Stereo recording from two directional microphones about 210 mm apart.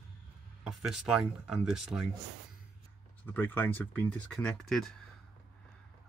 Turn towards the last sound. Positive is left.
turn(degrees=0)  # may be behind; listen again after turning